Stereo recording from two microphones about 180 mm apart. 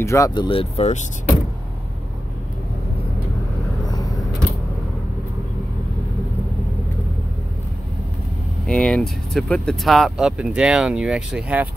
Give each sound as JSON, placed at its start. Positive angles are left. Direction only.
{"t": 0.0, "sound": "speech", "side_deg": 15}
{"t": 3.8, "sound": "vehicle", "side_deg": 20}
{"t": 8.6, "sound": "speech", "side_deg": 5}